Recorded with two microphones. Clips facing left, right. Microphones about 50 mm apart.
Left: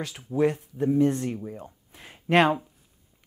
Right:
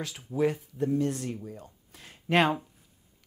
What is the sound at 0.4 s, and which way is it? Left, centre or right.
Speech, centre.